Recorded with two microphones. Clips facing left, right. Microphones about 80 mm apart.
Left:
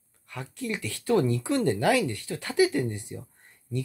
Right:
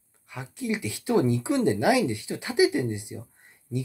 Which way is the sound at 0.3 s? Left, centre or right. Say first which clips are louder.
Right 3 dB; centre.